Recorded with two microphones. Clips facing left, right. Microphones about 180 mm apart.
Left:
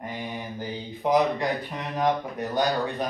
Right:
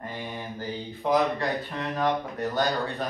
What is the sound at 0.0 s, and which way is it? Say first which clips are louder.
Speech: left 2 dB; 15° left (ahead or behind).